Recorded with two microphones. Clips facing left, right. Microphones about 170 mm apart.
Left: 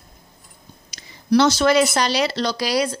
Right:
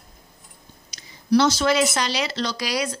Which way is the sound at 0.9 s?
70° left (ahead or behind).